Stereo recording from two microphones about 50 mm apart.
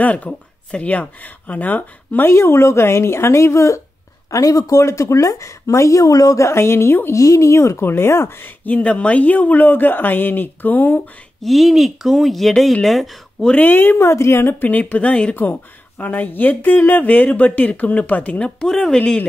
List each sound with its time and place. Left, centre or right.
0.0 s speech: left
2.2 s a woman's voice: left
7.1 s a woman's voice: left
8.6 s speech: left
11.4 s speech: centre
13.6 s speech: left
13.9 s a woman's voice: left
14.6 s speech: left
16.0 s speech: left
18.4 s speech: centre
18.9 s speech: left